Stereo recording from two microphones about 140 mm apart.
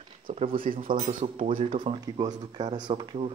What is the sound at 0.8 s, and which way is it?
Speech, 75° right (ahead or behind).